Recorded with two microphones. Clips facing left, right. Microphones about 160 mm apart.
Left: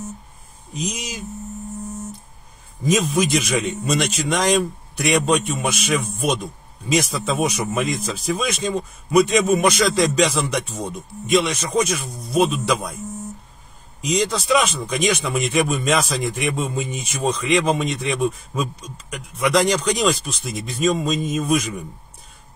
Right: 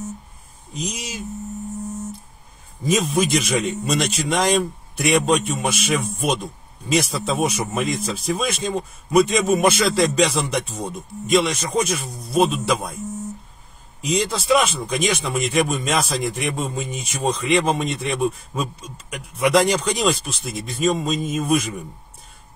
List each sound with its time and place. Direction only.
0.9 s speech: centre (ahead or behind)
2.8 s speech: centre (ahead or behind)
7.2 s speech: centre (ahead or behind)
14.0 s speech: centre (ahead or behind)